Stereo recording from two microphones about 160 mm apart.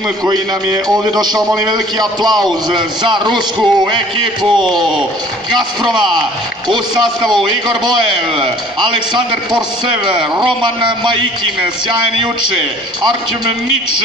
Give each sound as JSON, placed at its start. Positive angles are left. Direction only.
{"t": 0.2, "sound": "a man's voice", "side_deg": -25}